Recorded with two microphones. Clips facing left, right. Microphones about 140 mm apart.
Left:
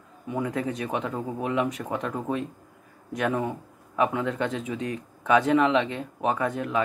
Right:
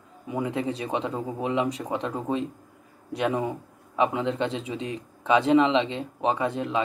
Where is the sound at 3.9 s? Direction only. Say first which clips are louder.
Right 1 dB; 25° right (ahead or behind).